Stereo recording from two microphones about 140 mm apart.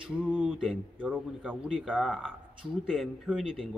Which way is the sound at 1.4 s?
5° left (ahead or behind).